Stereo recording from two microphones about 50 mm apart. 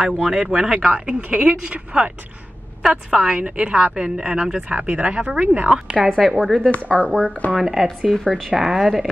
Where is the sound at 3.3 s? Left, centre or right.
Right.